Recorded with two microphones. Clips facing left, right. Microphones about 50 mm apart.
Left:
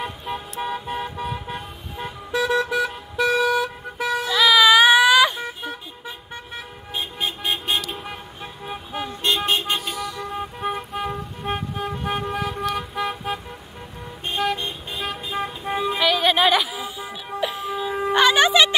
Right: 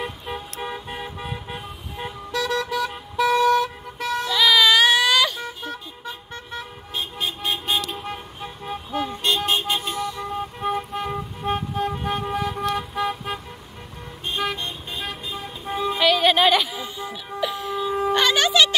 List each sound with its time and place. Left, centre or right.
0.0 s vehicle: centre
2.3 s vehicle: centre
2.9 s vehicle: centre; by 9.6 s left
10.3 s vehicle: centre
12.3 s toot: centre
12.7 s vehicle: centre
13.1 s car: centre
14.4 s vehicle: centre
15.4 s music: left
15.8 s music: centre